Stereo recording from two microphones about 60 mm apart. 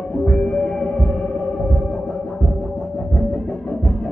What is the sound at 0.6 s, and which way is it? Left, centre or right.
Hum, centre.